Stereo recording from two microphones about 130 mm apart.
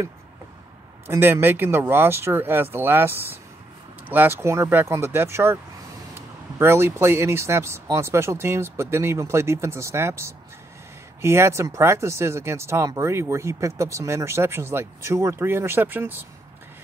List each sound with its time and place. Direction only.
1.0 s speech: 15° right (ahead or behind)